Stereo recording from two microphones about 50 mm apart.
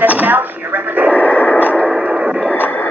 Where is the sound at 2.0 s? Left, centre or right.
Centre.